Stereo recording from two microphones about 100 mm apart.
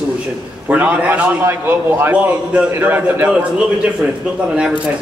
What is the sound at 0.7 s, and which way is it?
A man's voice, 15° right (ahead or behind).